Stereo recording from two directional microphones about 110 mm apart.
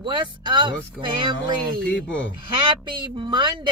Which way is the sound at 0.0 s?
45° right (ahead or behind).